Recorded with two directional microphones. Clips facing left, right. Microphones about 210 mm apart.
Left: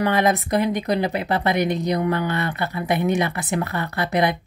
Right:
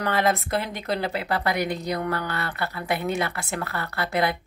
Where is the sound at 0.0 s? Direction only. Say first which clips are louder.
Left 4 dB; 15° left (ahead or behind).